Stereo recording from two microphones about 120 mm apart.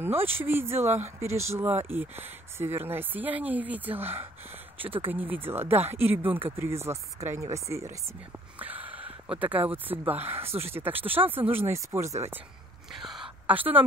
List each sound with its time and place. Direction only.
0.0 s speech: 20° right (ahead or behind)
8.5 s speech: 15° right (ahead or behind)
12.9 s a sound: 5° right (ahead or behind)